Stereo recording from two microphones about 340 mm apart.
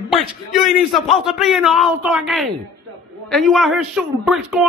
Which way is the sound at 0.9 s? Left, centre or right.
Centre.